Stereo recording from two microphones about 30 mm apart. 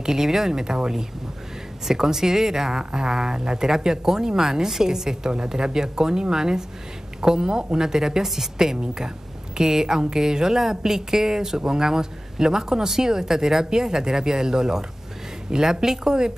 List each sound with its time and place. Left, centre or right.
0.0 s speech: centre